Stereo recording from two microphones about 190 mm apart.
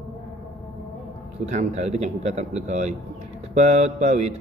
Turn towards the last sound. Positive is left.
turn(degrees=-35)  # may be behind; listen again after turning